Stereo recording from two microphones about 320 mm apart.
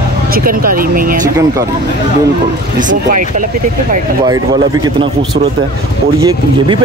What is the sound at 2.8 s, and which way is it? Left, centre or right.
Speech, right.